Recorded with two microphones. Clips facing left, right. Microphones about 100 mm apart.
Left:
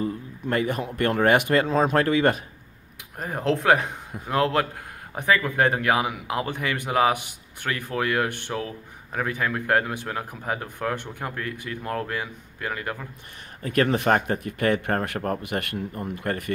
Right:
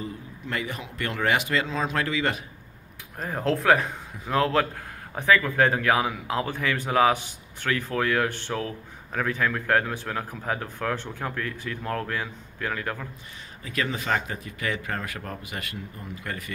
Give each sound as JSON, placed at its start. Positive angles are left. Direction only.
{"t": 0.0, "sound": "a man's voice", "side_deg": 45}
{"t": 3.2, "sound": "a man's voice", "side_deg": 20}
{"t": 13.6, "sound": "a man's voice", "side_deg": 55}